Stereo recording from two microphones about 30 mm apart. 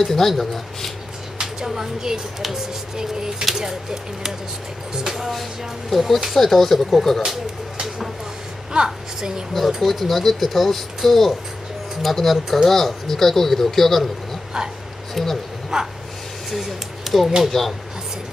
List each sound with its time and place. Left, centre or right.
0.0 s speech: centre
1.4 s a woman's voice: centre
8.7 s a woman's voice: right
9.8 s speech: centre
15.2 s speech: centre
15.7 s speech: centre
16.4 s a sound: centre
17.5 s speech: centre